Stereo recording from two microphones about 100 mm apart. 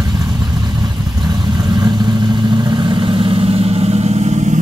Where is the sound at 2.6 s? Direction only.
45° right (ahead or behind); by 4.5 s 90° right.